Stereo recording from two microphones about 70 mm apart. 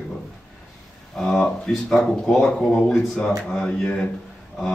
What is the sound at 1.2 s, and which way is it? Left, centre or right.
Speech, centre.